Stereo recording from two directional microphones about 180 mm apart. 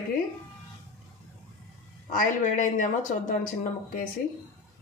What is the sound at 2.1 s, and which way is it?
A woman's voice, 45° left (ahead or behind).